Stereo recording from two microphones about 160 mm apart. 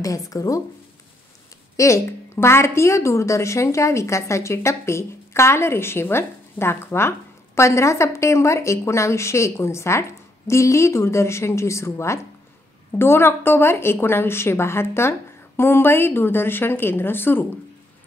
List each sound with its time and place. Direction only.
0.0 s speech: 20° left (ahead or behind)
1.8 s a woman's voice: 20° left (ahead or behind)